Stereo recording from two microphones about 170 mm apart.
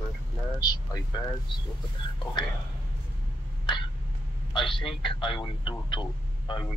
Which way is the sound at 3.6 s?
30° left (ahead or behind).